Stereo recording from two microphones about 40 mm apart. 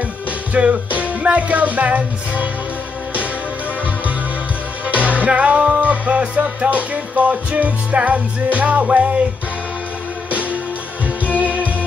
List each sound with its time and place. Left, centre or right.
0.5 s music: right
4.8 s music: right
11.2 s music: right